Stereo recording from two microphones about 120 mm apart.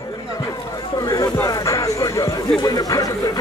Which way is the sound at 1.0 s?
25° left (ahead or behind).